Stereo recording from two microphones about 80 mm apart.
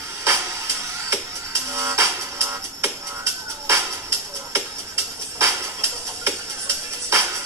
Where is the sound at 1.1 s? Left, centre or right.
Right.